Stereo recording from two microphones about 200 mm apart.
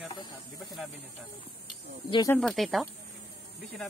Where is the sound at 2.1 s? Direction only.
20° left (ahead or behind).